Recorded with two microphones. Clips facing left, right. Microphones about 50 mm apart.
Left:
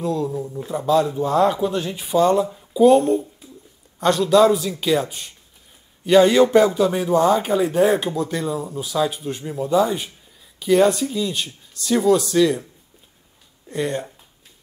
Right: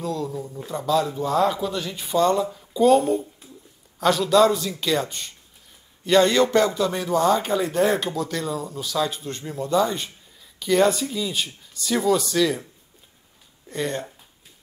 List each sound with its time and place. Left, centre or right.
0.0 s a man's voice: centre
13.7 s speech: centre